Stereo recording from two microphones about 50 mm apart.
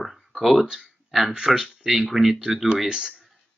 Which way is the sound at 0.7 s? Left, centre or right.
Centre.